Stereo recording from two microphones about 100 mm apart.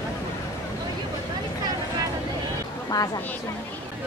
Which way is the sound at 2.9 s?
35° left (ahead or behind).